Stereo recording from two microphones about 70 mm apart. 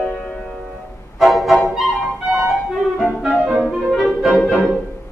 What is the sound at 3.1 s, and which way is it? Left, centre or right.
Music, centre.